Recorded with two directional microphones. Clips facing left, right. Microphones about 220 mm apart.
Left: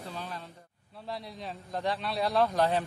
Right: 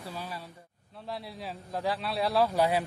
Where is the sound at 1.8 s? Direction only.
5° right (ahead or behind).